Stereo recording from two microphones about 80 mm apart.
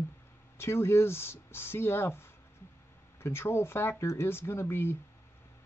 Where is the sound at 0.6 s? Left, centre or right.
Left.